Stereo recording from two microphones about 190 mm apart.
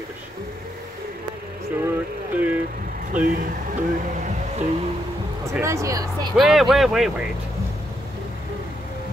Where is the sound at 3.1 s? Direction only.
45° right (ahead or behind).